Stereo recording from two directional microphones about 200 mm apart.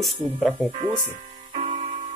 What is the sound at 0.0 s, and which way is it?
Speech, centre (ahead or behind).